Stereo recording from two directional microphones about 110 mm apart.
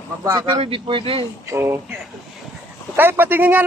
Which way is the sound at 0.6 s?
55° right (ahead or behind).